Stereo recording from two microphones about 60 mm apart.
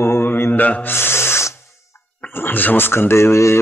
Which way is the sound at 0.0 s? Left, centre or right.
Left.